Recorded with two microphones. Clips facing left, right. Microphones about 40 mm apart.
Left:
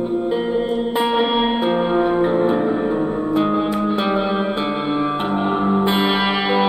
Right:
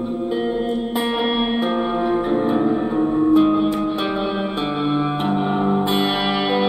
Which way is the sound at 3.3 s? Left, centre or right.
Centre.